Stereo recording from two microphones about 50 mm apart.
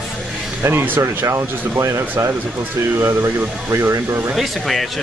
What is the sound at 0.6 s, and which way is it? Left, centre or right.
Speech, right.